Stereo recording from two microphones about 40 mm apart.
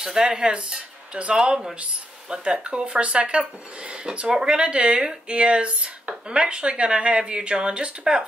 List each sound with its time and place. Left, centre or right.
0.0 s speech: centre